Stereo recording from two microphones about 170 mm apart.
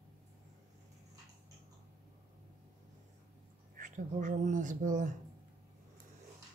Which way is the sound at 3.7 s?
50° right (ahead or behind).